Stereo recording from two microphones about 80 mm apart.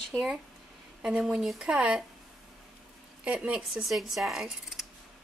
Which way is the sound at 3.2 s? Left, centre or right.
Centre.